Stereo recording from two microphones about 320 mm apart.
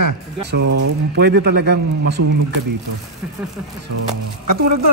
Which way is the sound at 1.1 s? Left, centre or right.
Right.